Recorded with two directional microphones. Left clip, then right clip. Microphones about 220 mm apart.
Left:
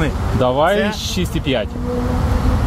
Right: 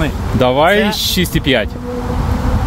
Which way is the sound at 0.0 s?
30° right (ahead or behind).